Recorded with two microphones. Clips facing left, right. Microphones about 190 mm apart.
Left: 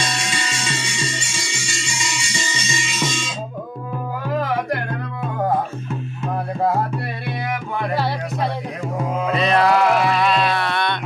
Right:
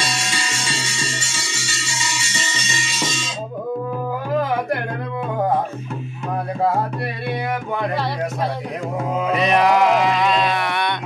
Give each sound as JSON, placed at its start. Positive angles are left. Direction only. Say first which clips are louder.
{"t": 0.0, "sound": "music", "louder": "left 1 dB", "side_deg": -10}
{"t": 9.3, "sound": "music", "louder": "even", "side_deg": -15}